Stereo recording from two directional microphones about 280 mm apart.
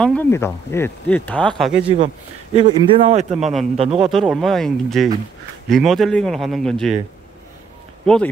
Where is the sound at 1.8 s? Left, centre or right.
Centre.